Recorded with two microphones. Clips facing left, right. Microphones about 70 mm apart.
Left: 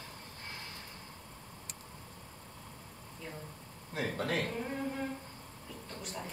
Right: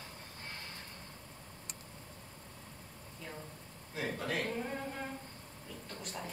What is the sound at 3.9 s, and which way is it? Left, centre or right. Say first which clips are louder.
Speech: left 3 dB; left.